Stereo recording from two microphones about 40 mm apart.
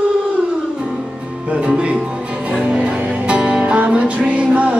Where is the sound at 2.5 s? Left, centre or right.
Right.